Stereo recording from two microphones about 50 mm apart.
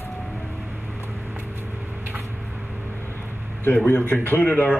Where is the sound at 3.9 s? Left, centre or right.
Left.